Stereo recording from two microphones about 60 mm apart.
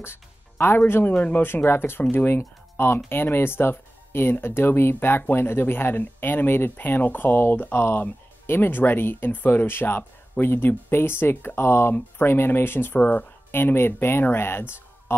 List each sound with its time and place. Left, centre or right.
0.0 s speech: left
1.1 s speech: left
1.5 s speech: left